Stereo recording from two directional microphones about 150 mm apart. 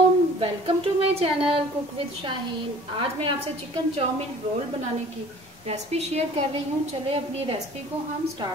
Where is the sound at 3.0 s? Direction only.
40° right (ahead or behind).